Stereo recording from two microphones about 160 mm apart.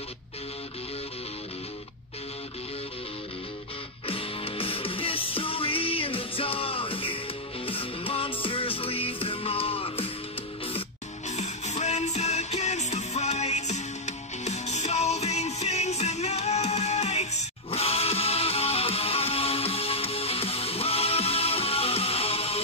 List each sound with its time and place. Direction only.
4.0 s music: 35° left (ahead or behind)
11.2 s music: 45° left (ahead or behind)